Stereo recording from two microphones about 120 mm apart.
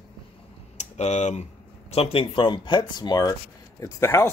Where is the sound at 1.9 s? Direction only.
55° left (ahead or behind); by 3.3 s 35° left (ahead or behind).